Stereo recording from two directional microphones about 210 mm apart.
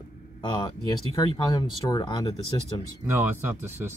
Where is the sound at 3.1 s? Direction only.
10° right (ahead or behind).